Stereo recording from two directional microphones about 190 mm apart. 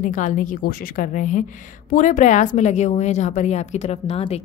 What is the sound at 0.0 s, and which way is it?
A woman's voice, 45° left (ahead or behind).